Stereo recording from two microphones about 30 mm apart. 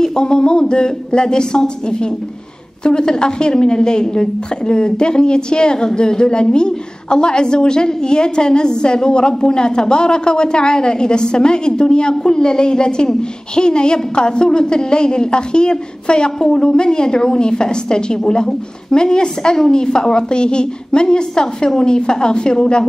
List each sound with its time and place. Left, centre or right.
0.0 s a woman's voice: left